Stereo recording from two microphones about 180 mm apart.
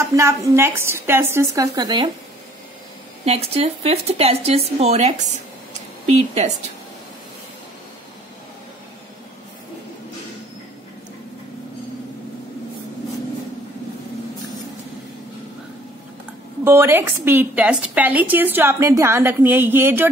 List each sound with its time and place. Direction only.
0.1 s a woman's voice: 15° right (ahead or behind)
3.3 s speech: 35° right (ahead or behind)
16.6 s a woman's voice: 15° right (ahead or behind)